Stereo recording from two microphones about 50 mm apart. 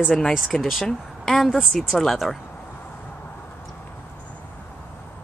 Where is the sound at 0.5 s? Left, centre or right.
Centre.